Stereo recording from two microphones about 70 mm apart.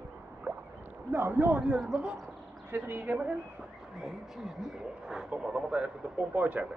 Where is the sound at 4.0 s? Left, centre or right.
Centre.